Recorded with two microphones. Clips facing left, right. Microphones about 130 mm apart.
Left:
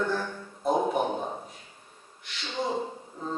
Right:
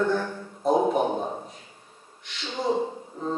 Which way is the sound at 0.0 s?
5° right (ahead or behind).